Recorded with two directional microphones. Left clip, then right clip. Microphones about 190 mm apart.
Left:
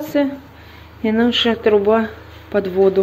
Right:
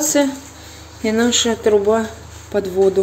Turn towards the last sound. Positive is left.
turn(degrees=-10)  # may be behind; listen again after turning